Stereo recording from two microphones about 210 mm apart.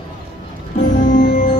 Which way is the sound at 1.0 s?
35° left (ahead or behind).